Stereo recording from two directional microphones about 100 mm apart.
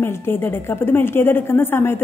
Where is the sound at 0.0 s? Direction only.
25° left (ahead or behind).